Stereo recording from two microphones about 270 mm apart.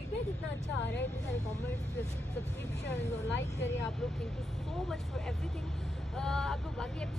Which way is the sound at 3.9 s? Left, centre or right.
Centre.